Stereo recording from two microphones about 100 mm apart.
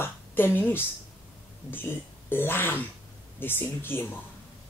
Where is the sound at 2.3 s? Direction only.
20° left (ahead or behind).